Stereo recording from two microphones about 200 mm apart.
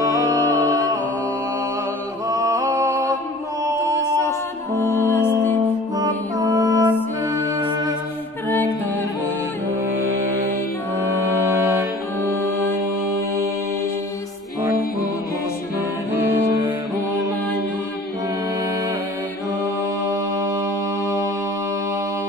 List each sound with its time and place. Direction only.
0.0 s music: 15° right (ahead or behind)
2.2 s music: 15° right (ahead or behind)
5.9 s music: 20° right (ahead or behind)
11.0 s music: 15° right (ahead or behind)
16.1 s music: 10° right (ahead or behind)
19.6 s music: 15° right (ahead or behind)